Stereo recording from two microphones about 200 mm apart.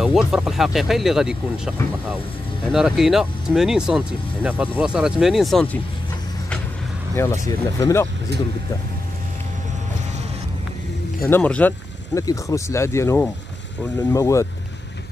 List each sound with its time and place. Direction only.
0.0 s speech: centre (ahead or behind)
7.2 s speech: 15° left (ahead or behind)
11.2 s speech: 10° left (ahead or behind)